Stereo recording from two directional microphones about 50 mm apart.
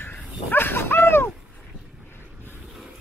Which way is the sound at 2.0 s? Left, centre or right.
Left.